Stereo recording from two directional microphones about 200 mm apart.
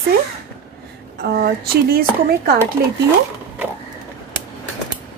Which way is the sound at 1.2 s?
50° right (ahead or behind).